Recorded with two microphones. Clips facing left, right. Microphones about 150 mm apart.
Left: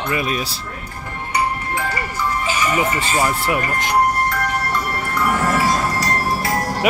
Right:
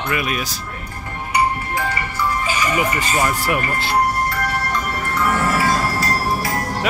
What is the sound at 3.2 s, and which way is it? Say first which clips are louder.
Speech: left 1 dB; 15° left (ahead or behind).